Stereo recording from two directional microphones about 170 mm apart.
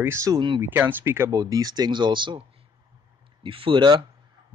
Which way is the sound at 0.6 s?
15° right (ahead or behind).